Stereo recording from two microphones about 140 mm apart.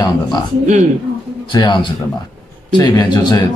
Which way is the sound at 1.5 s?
30° left (ahead or behind).